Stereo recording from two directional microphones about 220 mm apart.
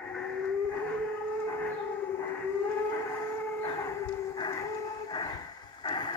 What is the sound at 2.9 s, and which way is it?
Train, 10° left (ahead or behind).